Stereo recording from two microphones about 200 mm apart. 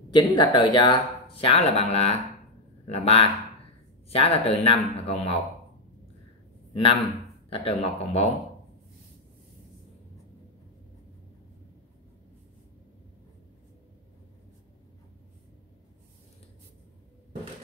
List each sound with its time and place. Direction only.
0.1 s speech: 20° left (ahead or behind)
6.7 s speech: 30° left (ahead or behind)